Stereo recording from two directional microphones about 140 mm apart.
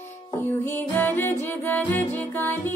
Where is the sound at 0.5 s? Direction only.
15° left (ahead or behind).